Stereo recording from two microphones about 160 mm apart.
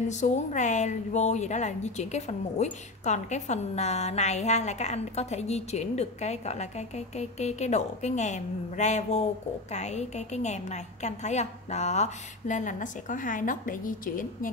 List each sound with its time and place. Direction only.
0.1 s a woman's voice: 50° left (ahead or behind)